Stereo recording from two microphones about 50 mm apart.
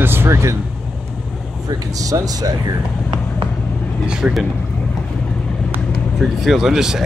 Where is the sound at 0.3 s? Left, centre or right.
Right.